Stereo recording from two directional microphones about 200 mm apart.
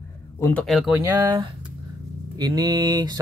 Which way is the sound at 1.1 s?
15° right (ahead or behind).